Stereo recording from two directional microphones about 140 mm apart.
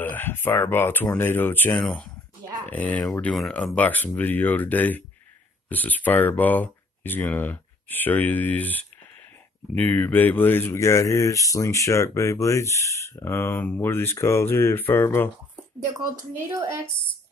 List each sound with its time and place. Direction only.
0.1 s speech: 15° left (ahead or behind)
16.3 s a woman's voice: 20° right (ahead or behind)